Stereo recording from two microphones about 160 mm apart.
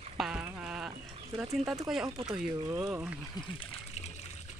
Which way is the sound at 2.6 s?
15° right (ahead or behind).